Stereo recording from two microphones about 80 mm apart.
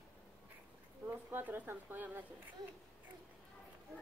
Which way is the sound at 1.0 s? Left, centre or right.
Right.